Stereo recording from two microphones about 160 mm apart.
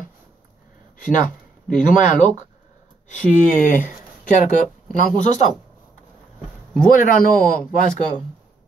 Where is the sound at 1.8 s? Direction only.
55° left (ahead or behind).